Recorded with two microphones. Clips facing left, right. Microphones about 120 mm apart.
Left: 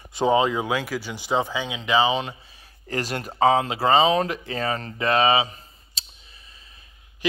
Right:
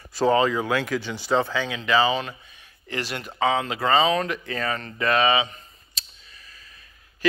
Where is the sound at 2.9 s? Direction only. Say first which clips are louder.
Left 3 dB; 40° left (ahead or behind).